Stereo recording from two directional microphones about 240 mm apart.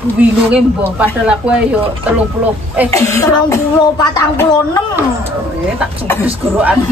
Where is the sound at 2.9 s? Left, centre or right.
Centre.